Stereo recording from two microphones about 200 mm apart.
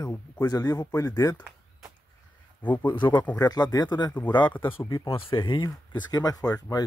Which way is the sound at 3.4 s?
20° left (ahead or behind).